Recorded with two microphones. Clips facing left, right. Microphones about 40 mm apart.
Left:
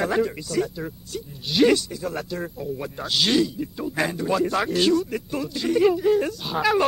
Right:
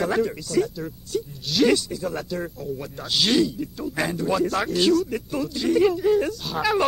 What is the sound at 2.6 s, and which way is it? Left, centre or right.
Speech, centre.